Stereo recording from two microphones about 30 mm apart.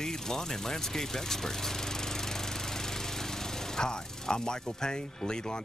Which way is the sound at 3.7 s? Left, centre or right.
Left.